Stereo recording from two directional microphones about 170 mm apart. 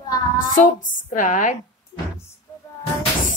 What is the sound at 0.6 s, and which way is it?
A woman's voice, 50° left (ahead or behind).